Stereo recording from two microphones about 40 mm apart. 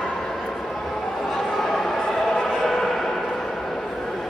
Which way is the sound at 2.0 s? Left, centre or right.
Centre.